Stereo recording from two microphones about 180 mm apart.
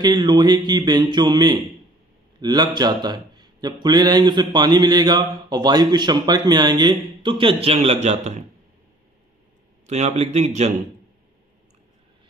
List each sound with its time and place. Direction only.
0.0 s speech: 25° right (ahead or behind)
9.8 s speech: 40° right (ahead or behind)